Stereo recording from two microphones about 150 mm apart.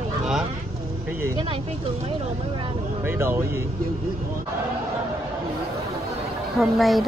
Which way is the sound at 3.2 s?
15° right (ahead or behind).